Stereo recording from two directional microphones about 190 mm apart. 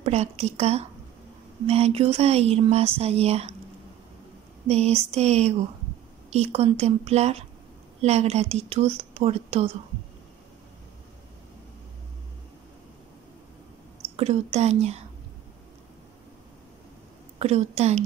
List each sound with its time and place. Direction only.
0.0 s speech: 35° right (ahead or behind)
4.6 s speech: 35° right (ahead or behind)
14.1 s speech: 35° right (ahead or behind)
17.4 s speech: 35° right (ahead or behind)